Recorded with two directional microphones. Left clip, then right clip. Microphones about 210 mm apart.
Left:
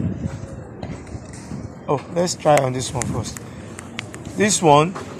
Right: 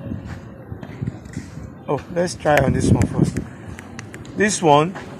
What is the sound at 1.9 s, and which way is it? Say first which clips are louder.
Speech: left 1 dB; centre (ahead or behind).